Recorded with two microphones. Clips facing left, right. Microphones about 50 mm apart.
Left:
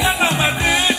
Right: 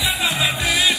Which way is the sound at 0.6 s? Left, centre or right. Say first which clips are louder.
Left 2 dB; left.